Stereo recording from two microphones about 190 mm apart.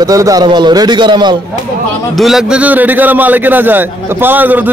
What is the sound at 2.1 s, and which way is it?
A man's voice, centre (ahead or behind).